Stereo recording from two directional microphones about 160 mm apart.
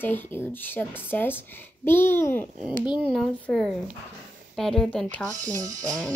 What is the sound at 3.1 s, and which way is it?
Speech, 5° left (ahead or behind).